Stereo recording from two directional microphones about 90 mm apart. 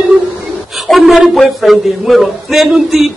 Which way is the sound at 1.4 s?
Centre (ahead or behind).